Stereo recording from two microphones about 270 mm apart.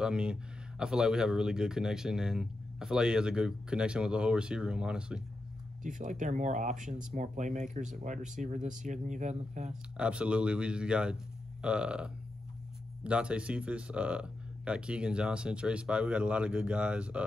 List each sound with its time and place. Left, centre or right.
0.0 s speech: centre
5.9 s speech: right
9.7 s speech: centre